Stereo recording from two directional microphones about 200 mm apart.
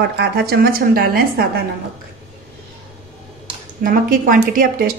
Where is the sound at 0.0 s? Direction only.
55° right (ahead or behind).